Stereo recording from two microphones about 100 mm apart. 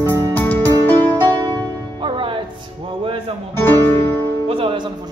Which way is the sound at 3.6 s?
20° left (ahead or behind).